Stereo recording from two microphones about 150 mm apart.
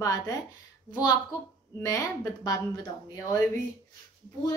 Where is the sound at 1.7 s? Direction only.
20° left (ahead or behind).